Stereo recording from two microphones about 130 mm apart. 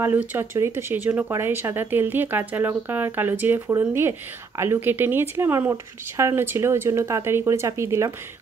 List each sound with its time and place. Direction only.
0.0 s speech: 15° right (ahead or behind)